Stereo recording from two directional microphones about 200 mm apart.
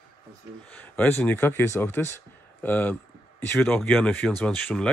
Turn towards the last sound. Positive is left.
turn(degrees=5)  # may be behind; listen again after turning